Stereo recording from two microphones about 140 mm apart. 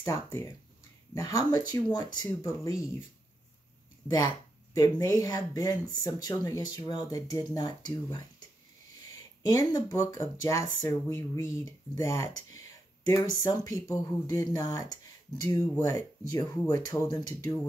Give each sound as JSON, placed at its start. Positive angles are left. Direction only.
{"t": 0.0, "sound": "speech", "side_deg": 20}
{"t": 4.7, "sound": "speech", "side_deg": 25}
{"t": 9.5, "sound": "speech", "side_deg": 25}